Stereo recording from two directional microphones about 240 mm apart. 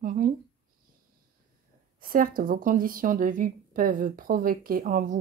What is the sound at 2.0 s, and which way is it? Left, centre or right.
Speech, right.